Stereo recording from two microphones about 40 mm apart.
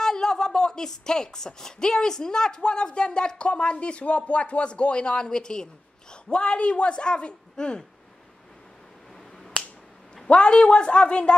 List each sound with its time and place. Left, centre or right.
0.0 s a woman's voice: centre
10.3 s a woman's voice: left